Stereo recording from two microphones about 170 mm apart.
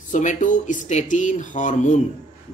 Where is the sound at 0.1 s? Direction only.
45° left (ahead or behind).